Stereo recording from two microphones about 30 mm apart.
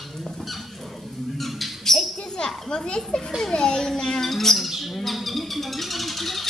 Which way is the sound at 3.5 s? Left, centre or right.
Left.